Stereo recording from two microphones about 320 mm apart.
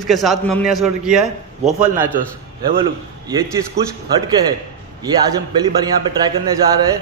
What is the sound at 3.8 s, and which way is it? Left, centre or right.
Speech, right.